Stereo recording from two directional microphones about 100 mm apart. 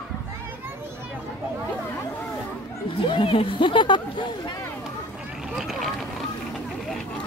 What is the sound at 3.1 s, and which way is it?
Speech, 60° left (ahead or behind).